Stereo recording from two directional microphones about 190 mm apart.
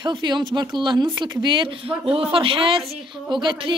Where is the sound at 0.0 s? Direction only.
25° right (ahead or behind).